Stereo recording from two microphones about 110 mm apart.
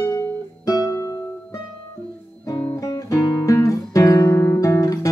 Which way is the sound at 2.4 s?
30° left (ahead or behind).